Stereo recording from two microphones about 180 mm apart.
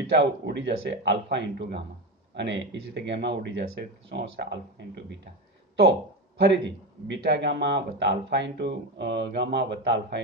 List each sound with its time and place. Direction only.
0.2 s speech: 75° right (ahead or behind)